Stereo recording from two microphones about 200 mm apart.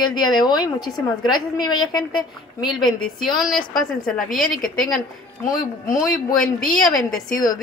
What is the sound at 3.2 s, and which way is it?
A woman's voice, centre (ahead or behind).